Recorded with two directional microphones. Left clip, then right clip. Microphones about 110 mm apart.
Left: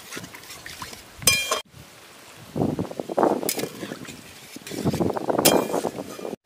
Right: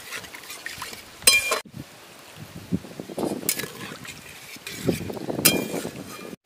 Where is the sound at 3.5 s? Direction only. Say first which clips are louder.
Left 2 dB; 5° left (ahead or behind).